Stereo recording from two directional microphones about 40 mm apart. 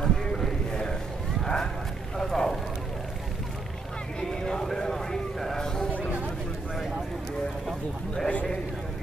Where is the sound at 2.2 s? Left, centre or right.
Centre.